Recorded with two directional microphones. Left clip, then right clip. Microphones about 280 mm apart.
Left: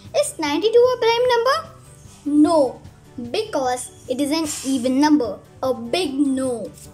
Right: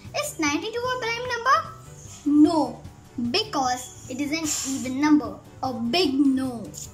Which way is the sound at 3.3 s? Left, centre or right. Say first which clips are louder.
Left 3 dB; centre.